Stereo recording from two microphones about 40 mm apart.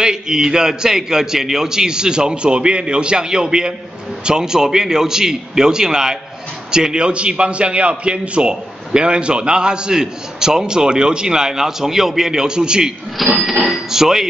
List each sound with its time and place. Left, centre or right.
0.0 s a man's voice: centre
13.4 s a man's voice: centre